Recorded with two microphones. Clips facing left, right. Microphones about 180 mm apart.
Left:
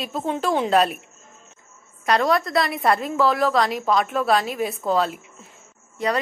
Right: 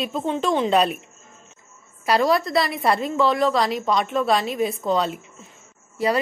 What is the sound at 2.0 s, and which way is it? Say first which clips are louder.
A woman's voice: right 1 dB; 5° right (ahead or behind).